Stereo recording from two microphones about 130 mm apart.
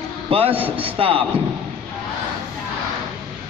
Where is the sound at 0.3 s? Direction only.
45° right (ahead or behind).